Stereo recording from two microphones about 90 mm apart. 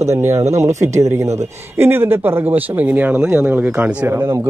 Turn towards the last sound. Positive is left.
turn(degrees=-30)  # may be behind; listen again after turning